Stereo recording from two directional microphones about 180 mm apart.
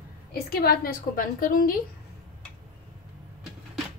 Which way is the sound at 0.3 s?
60° left (ahead or behind).